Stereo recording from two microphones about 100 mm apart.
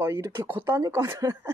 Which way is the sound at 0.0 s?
25° right (ahead or behind).